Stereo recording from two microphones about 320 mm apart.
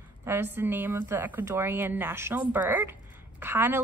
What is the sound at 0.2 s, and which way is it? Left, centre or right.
A woman's voice, centre.